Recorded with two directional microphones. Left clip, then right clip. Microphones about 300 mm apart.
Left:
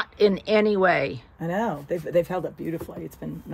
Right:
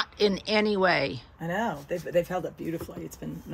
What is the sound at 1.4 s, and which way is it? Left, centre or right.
Speech, left.